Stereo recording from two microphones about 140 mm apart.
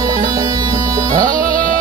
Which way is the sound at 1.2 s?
80° right.